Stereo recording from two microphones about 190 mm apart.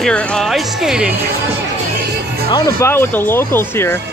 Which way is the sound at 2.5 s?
20° left (ahead or behind).